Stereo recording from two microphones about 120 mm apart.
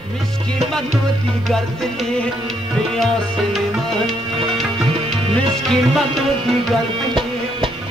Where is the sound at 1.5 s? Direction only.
5° left (ahead or behind).